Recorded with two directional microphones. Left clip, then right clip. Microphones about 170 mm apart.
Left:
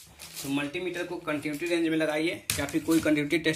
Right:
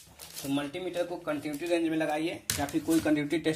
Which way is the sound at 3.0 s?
25° right (ahead or behind).